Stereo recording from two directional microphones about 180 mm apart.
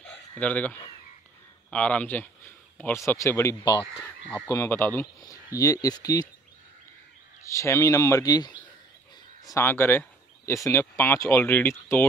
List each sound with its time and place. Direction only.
0.0 s a sound: 10° left (ahead or behind)
1.7 s speech: 5° left (ahead or behind)
7.4 s speech: 15° left (ahead or behind)